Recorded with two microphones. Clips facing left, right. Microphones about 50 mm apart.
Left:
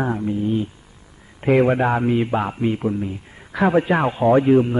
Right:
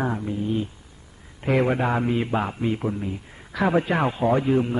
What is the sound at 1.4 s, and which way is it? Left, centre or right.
Speech, centre.